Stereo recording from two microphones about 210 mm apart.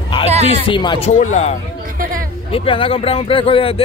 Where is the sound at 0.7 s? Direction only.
20° left (ahead or behind).